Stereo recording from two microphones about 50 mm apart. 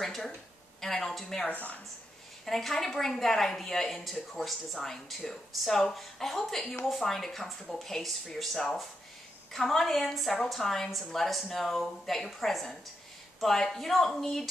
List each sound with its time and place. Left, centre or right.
0.0 s a sound: centre
0.7 s a woman's voice: centre
1.5 s speech: left
2.4 s a woman's voice: centre